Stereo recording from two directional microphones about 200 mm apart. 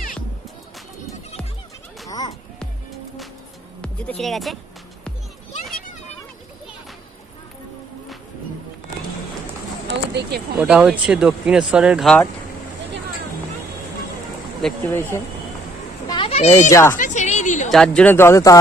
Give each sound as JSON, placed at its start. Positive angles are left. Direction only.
{"t": 2.0, "sound": "music", "side_deg": 20}
{"t": 3.8, "sound": "speech", "side_deg": 5}
{"t": 9.8, "sound": "a sound", "side_deg": -60}
{"t": 10.6, "sound": "speech", "side_deg": -5}
{"t": 14.6, "sound": "speech", "side_deg": 10}
{"t": 16.1, "sound": "children playing", "side_deg": 25}
{"t": 16.9, "sound": "music", "side_deg": 40}
{"t": 17.6, "sound": "speech", "side_deg": 5}